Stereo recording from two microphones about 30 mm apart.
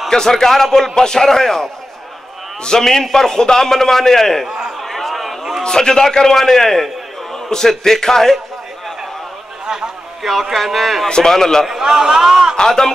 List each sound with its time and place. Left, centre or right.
0.1 s a man's voice: centre
0.9 s a man's voice: left
2.8 s a man's voice: centre
4.5 s a sound: right
4.7 s a sound: centre
5.6 s a man's voice: left
7.3 s a sound: centre
7.8 s a man's voice: centre
10.5 s speech: centre
11.1 s a man's voice: left
11.8 s a man's voice: centre
12.5 s a man's voice: centre